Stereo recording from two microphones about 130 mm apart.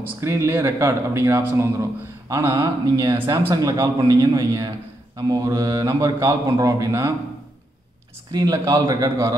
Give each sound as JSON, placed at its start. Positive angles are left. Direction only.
{"t": 0.0, "sound": "a man's voice", "side_deg": -20}
{"t": 8.3, "sound": "a man's voice", "side_deg": -30}